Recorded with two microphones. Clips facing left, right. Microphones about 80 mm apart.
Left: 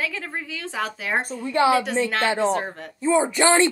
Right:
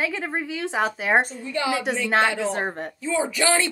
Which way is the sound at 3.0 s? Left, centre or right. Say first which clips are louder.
Left 5 dB; left.